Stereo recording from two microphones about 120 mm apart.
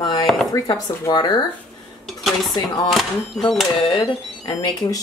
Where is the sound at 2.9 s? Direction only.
Centre (ahead or behind).